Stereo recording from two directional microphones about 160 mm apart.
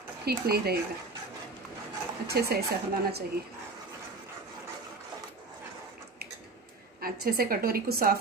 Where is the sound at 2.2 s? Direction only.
80° right.